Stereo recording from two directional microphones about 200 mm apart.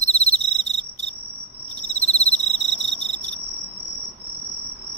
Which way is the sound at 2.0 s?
35° left (ahead or behind).